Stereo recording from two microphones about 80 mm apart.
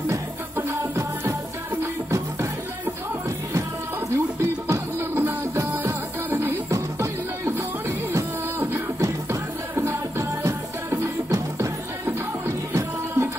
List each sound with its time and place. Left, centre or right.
0.1 s music: right
4.1 s music: right